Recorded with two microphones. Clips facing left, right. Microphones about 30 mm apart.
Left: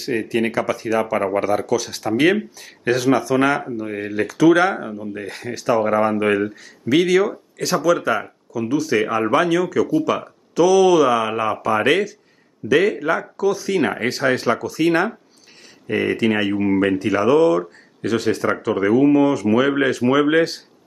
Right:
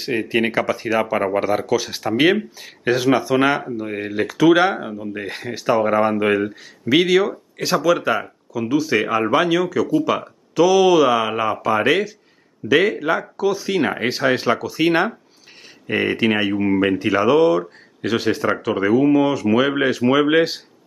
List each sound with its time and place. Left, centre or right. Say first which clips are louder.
0.3 s speech: right 2 dB; right
12.6 s speech: even; centre
16.4 s speech: even; centre
17.0 s speech: right 1 dB; centre